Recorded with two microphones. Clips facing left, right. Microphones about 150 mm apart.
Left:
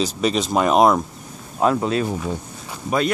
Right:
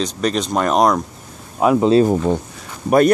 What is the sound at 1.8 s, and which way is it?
Speech, 30° right (ahead or behind).